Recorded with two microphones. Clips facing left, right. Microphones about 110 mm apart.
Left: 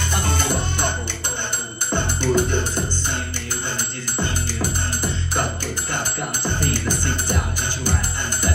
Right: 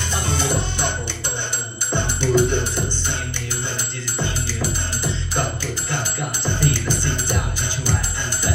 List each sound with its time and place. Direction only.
0.1 s music: 50° left (ahead or behind)
2.0 s music: 45° left (ahead or behind)
6.6 s music: 45° left (ahead or behind)